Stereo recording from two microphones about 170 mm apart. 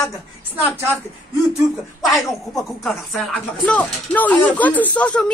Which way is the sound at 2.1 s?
Centre (ahead or behind).